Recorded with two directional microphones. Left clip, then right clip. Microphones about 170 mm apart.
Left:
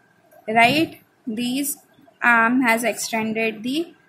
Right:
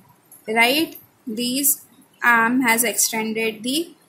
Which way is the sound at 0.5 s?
10° left (ahead or behind).